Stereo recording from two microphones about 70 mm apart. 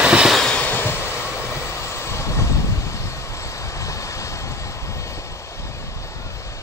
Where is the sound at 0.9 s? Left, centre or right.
Left.